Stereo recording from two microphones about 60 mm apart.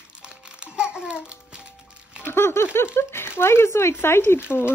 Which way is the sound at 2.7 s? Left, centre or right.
Left.